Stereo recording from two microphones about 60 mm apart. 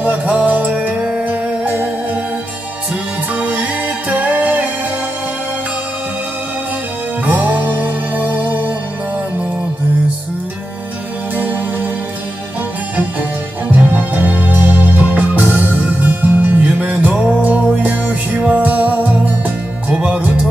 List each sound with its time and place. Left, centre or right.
0.0 s music: right
3.3 s music: right
7.2 s music: right
11.3 s music: right
13.7 s music: right